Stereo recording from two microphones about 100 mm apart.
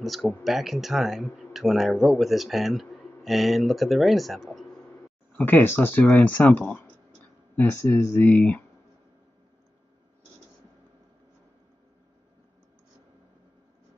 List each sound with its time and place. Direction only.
0.0 s speech: centre (ahead or behind)
5.4 s speech: 20° left (ahead or behind)